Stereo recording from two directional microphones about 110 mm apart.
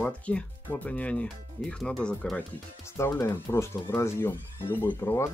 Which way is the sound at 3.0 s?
25° left (ahead or behind).